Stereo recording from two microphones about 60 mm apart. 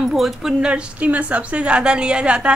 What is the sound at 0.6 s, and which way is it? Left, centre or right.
A woman's voice, right.